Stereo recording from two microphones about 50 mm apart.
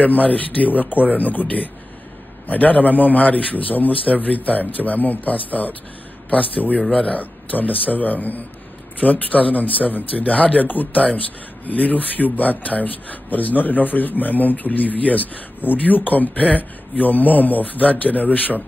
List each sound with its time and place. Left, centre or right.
0.0 s speech: left
6.9 s speech: centre
7.2 s speech: left